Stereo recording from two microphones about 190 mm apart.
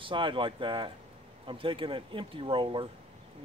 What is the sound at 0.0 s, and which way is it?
Speech, 25° right (ahead or behind).